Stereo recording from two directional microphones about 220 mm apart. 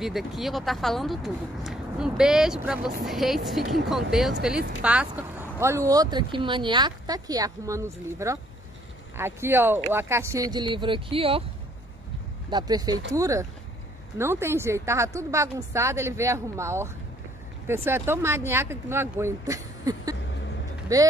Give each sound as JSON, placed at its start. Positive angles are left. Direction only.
{"t": 0.0, "sound": "speech", "side_deg": 0}
{"t": 12.4, "sound": "speech", "side_deg": -20}